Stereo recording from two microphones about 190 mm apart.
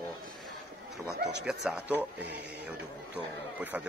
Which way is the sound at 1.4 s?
5° right (ahead or behind).